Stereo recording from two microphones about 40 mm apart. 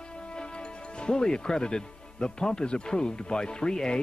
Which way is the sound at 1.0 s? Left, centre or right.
Centre.